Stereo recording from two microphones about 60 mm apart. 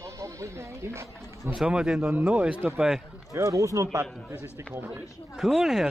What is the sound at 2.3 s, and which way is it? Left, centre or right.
Speech, centre.